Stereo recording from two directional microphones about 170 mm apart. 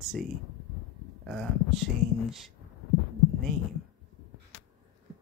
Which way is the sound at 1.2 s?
Centre (ahead or behind).